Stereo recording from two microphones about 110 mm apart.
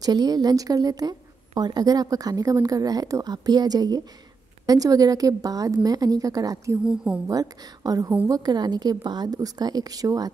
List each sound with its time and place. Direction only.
0.0 s a woman's voice: 40° right (ahead or behind)
6.8 s a woman's voice: 10° right (ahead or behind)
7.2 s a woman's voice: 35° right (ahead or behind)